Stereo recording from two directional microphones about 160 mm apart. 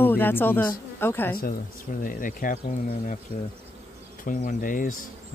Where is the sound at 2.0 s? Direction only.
60° left (ahead or behind).